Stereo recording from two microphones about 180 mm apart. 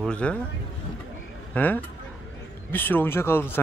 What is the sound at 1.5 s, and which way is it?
Speech, 10° left (ahead or behind).